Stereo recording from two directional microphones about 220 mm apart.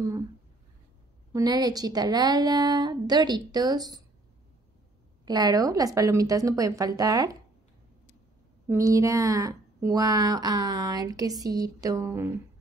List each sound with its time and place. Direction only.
1.3 s speech: 15° right (ahead or behind)
5.2 s speech: 20° right (ahead or behind)
8.6 s speech: 15° right (ahead or behind)